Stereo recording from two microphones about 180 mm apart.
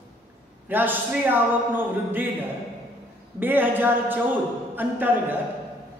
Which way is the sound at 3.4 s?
10° right (ahead or behind).